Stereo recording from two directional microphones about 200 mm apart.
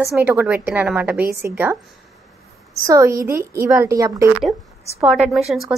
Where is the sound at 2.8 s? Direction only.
15° right (ahead or behind).